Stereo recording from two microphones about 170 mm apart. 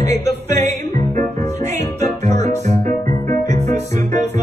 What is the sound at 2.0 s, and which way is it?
Music, 40° right (ahead or behind).